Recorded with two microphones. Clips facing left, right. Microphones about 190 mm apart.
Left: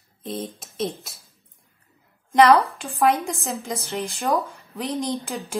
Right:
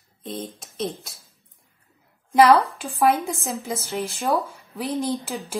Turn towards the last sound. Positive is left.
turn(degrees=0)  # may be behind; listen again after turning